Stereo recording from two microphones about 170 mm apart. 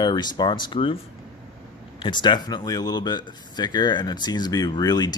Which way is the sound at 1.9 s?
30° left (ahead or behind).